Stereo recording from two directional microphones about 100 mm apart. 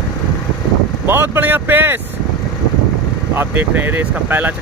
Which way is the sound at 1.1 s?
20° right (ahead or behind).